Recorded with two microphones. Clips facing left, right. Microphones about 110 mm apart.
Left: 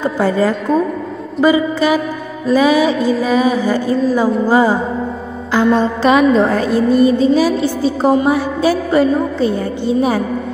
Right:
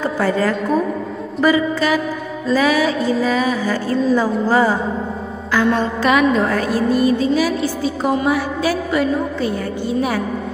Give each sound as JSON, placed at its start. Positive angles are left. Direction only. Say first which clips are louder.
{"t": 0.0, "sound": "a woman's voice", "louder": "left 3 dB", "side_deg": 20}